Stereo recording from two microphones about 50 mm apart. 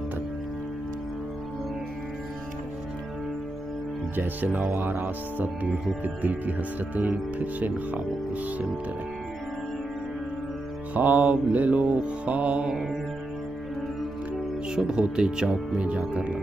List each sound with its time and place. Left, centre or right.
4.2 s speech: right
11.0 s mantra: right
14.8 s speech: centre
15.8 s mantra: right